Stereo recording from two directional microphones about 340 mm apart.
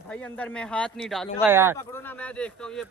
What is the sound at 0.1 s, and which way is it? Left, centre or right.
Speech, centre.